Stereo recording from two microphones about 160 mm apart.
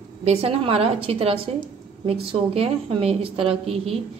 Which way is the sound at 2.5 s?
35° right (ahead or behind).